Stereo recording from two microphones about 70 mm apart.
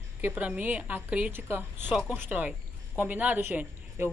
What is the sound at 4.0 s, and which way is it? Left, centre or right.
Speech, right.